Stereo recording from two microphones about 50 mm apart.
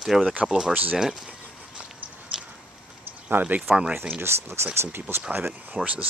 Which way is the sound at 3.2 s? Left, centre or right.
Right.